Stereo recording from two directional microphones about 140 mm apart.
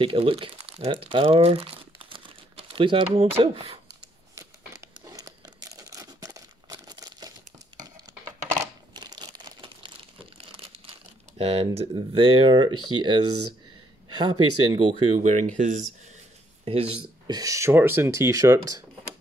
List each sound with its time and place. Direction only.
0.0 s speech: 40° right (ahead or behind)
5.0 s crumpling: 25° right (ahead or behind)
8.9 s crumpling: 30° right (ahead or behind)
11.3 s speech: 45° right (ahead or behind)
15.1 s speech: 60° right (ahead or behind)
17.3 s speech: 25° right (ahead or behind)